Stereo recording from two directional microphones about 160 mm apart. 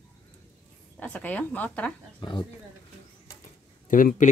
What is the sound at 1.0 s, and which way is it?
Speech, 10° left (ahead or behind).